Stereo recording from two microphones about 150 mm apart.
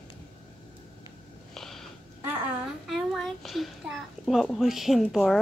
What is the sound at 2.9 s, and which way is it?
A child's voice, centre (ahead or behind).